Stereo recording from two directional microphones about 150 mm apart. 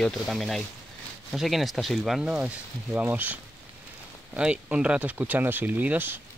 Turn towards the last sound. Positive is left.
turn(degrees=-10)  # may be behind; listen again after turning